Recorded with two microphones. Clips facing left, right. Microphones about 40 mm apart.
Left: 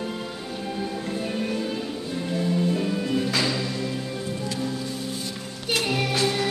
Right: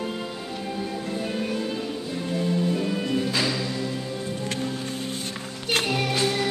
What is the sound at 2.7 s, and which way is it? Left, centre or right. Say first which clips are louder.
Music: even; centre.